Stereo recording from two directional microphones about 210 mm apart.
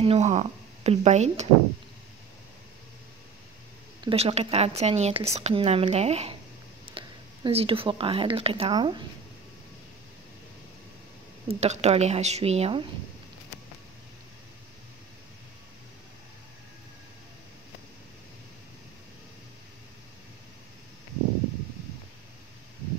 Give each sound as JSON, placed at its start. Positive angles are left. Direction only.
{"t": 0.0, "sound": "speech", "side_deg": -30}
{"t": 4.0, "sound": "a woman's voice", "side_deg": -30}
{"t": 11.4, "sound": "a woman's voice", "side_deg": -30}